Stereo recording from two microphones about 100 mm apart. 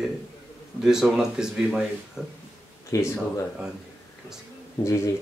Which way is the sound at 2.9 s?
35° left (ahead or behind).